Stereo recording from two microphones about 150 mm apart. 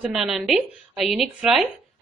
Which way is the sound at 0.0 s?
Centre (ahead or behind).